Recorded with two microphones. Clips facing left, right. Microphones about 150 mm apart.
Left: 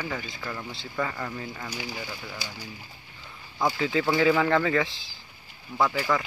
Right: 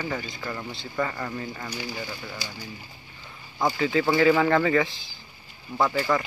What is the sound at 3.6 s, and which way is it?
Speech, centre (ahead or behind).